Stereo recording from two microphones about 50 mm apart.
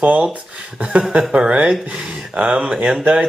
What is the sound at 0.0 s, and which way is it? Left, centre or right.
Speech, right.